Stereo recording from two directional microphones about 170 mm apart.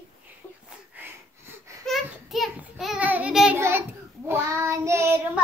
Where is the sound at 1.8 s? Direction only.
Centre (ahead or behind).